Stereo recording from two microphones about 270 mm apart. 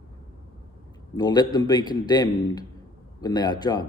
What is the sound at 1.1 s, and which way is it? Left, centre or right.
Speech, centre.